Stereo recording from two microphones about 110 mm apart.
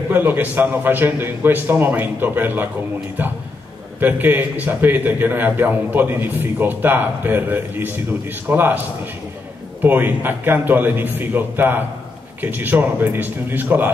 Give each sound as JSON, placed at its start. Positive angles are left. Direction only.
{"t": 0.1, "sound": "a man's voice", "side_deg": -20}
{"t": 4.0, "sound": "a man's voice", "side_deg": -15}
{"t": 9.8, "sound": "a man's voice", "side_deg": -15}